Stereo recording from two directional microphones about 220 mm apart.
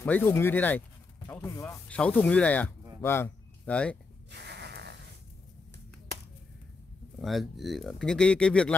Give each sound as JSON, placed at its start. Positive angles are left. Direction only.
{"t": 0.0, "sound": "speech", "side_deg": 10}
{"t": 4.3, "sound": "a sound", "side_deg": -50}
{"t": 7.2, "sound": "speech", "side_deg": 0}